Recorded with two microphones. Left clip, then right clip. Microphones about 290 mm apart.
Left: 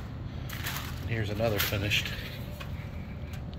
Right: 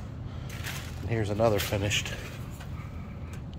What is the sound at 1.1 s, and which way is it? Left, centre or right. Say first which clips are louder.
Speech: right 5 dB; centre.